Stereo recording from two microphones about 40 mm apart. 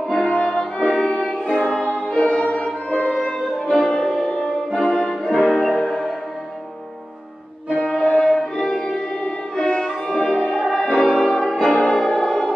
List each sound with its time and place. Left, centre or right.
0.1 s music: centre
3.9 s music: centre
7.8 s music: left
9.6 s violin: left
9.8 s music: centre
11.0 s brass instrument: centre
11.2 s music: centre